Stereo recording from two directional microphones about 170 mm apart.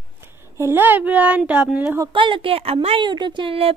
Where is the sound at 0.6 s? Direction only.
15° right (ahead or behind).